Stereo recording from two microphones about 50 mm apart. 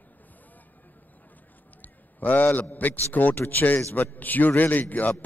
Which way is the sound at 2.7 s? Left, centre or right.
Left.